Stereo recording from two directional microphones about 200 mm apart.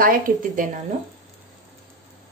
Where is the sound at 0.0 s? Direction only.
45° right (ahead or behind).